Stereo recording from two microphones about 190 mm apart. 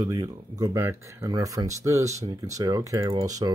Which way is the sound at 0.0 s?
20° right (ahead or behind).